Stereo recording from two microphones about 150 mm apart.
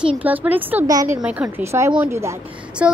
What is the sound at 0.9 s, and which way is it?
Speech, 25° right (ahead or behind).